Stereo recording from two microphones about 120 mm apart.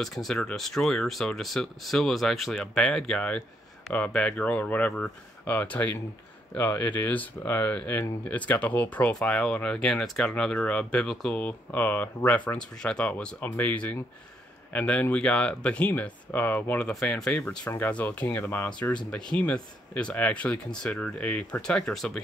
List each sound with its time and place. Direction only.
0.0 s speech: 5° left (ahead or behind)
19.0 s speech: 5° left (ahead or behind)